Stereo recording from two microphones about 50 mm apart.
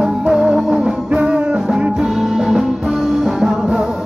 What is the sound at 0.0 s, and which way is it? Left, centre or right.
Music, centre.